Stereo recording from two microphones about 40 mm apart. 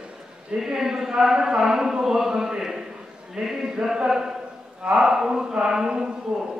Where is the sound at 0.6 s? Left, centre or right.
Centre.